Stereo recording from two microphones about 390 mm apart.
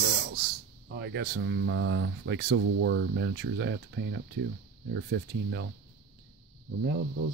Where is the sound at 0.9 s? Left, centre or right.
Right.